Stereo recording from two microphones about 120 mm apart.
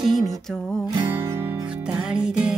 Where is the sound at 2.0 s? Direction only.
5° right (ahead or behind).